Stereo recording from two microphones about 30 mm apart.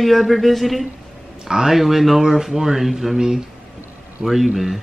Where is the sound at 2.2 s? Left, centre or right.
Centre.